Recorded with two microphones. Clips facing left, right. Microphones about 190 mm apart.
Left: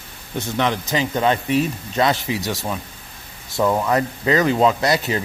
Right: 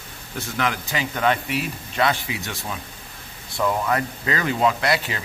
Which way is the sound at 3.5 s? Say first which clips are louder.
Left 4 dB; 25° left (ahead or behind).